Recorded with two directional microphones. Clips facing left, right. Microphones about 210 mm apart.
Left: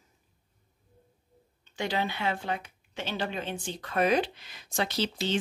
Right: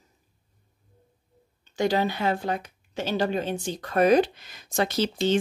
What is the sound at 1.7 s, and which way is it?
Speech, 40° right (ahead or behind).